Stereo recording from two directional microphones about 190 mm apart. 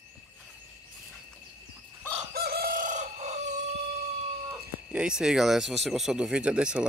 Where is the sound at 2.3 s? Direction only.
55° right (ahead or behind); by 3.4 s 35° right (ahead or behind).